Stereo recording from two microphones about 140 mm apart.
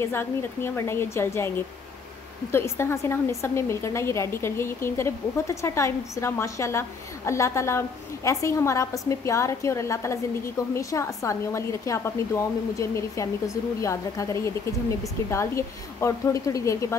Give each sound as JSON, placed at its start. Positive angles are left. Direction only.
{"t": 0.0, "sound": "a woman's voice", "side_deg": 15}
{"t": 2.5, "sound": "a woman's voice", "side_deg": 20}